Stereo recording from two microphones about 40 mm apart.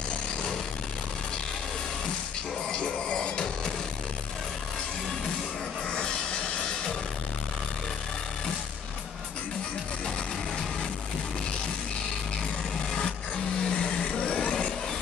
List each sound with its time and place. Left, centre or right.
2.7 s music: left
5.9 s music: left
13.7 s vehicle: left